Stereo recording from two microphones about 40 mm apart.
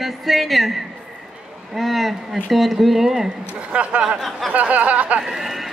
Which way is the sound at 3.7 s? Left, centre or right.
Right.